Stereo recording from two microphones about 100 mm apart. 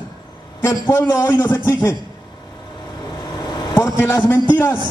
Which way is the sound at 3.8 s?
25° left (ahead or behind).